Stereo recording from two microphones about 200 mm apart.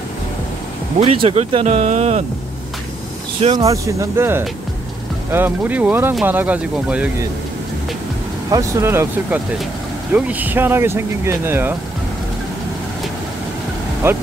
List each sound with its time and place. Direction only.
0.9 s speech: 30° right (ahead or behind)
3.3 s speech: 30° right (ahead or behind)
3.6 s speech: 15° right (ahead or behind)
8.5 s speech: 15° right (ahead or behind)
14.0 s speech: 10° right (ahead or behind)